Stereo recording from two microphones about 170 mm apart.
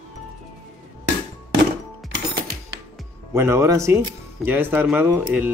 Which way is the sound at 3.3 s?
15° right (ahead or behind).